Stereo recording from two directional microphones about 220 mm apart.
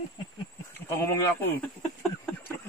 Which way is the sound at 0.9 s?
10° left (ahead or behind).